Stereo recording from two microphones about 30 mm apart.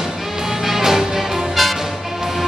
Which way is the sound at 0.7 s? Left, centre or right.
Centre.